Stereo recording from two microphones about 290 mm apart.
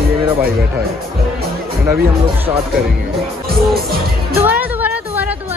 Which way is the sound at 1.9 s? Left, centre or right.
Centre.